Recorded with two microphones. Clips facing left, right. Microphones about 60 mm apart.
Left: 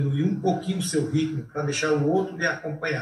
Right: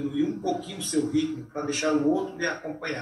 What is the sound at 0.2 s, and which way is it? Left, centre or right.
A man's voice, left.